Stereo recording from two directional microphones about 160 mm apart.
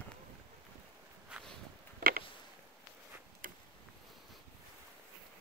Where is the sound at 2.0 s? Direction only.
65° right (ahead or behind).